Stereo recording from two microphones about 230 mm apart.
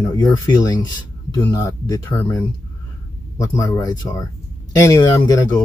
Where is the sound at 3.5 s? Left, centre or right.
Centre.